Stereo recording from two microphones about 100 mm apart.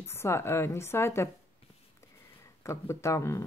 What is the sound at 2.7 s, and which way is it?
Speech, 30° left (ahead or behind).